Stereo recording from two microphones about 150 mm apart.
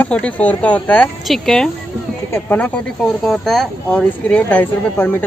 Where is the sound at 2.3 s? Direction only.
15° left (ahead or behind).